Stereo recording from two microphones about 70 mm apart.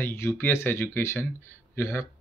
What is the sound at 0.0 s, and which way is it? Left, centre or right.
Speech, left.